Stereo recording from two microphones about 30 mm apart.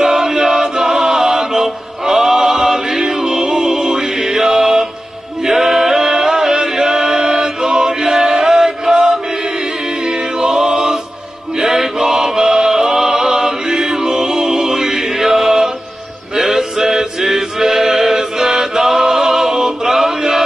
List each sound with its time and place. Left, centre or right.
0.0 s chant: centre
3.3 s music: centre
5.4 s a capella: centre
6.0 s chant: right
9.4 s chant: right
10.6 s music: centre
11.6 s mantra: centre
12.4 s music: right
14.0 s music: right
14.5 s music: centre
16.8 s chant: centre
19.6 s music: centre